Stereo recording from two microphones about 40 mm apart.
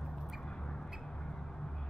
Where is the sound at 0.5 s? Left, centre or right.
Left.